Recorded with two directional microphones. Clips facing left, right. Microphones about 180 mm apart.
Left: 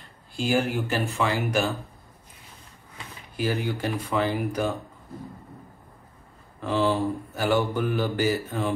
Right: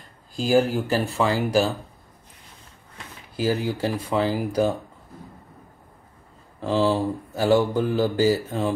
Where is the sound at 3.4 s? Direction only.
30° right (ahead or behind).